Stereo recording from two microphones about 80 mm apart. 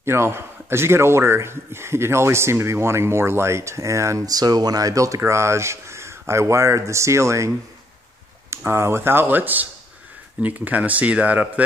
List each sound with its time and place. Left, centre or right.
0.0 s a man's voice: right
4.4 s a man's voice: right; by 11.6 s centre